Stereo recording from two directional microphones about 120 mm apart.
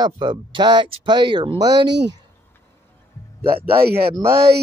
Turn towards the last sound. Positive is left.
turn(degrees=-20)  # may be behind; listen again after turning